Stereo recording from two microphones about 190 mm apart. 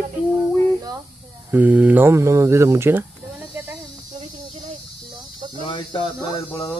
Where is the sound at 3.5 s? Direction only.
10° right (ahead or behind).